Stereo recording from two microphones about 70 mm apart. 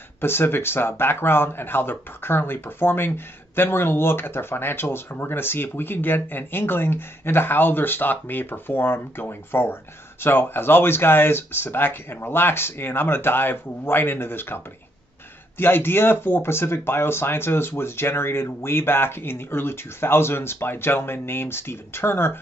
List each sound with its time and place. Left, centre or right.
0.2 s speech: left